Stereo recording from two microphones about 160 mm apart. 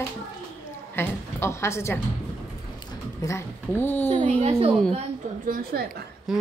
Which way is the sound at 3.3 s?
15° left (ahead or behind).